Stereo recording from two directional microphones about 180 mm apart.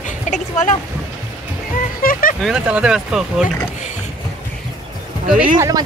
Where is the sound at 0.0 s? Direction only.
45° left (ahead or behind).